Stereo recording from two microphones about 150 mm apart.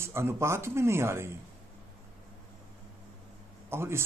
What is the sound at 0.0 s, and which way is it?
A man's voice, 15° right (ahead or behind).